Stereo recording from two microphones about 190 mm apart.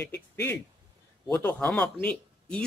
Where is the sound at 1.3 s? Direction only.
5° left (ahead or behind).